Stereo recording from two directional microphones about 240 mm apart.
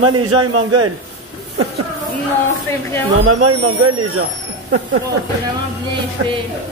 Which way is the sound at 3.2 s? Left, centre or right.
Right.